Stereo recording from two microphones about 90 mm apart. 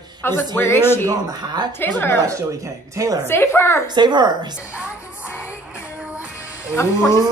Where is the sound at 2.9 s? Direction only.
40° right (ahead or behind).